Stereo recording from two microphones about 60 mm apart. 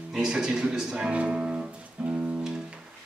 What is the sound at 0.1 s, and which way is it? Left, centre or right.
Speech, centre.